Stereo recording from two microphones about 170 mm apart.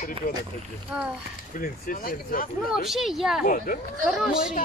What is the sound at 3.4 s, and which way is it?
Speech, 55° left (ahead or behind).